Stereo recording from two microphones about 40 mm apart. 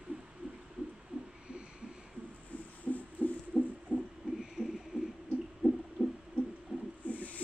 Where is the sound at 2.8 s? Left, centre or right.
Left.